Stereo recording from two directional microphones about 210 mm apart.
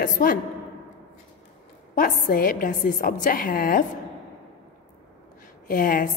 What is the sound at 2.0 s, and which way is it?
A woman's voice, 40° left (ahead or behind).